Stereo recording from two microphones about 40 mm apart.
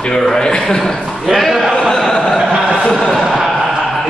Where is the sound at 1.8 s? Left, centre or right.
Centre.